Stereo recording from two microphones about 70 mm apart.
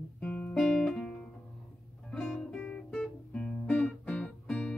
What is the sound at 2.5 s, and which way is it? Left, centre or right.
Guitar, centre.